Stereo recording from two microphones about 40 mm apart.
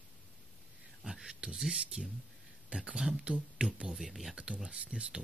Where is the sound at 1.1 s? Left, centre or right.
Centre.